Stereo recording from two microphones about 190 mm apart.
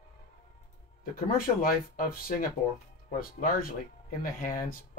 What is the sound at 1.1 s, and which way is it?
Speech, 50° left (ahead or behind).